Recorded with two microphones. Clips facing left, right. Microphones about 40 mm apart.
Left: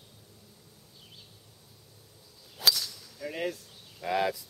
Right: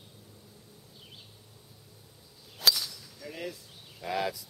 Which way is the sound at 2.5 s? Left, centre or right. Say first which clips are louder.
Even; centre.